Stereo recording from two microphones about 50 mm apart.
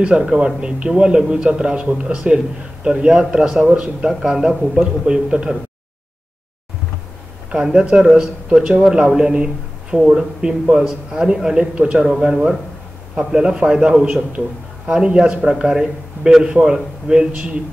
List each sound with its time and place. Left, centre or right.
0.0 s a man's voice: centre
7.7 s a man's voice: centre